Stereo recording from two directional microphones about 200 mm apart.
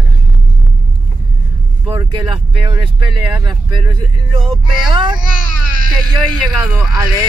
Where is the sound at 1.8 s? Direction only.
20° right (ahead or behind).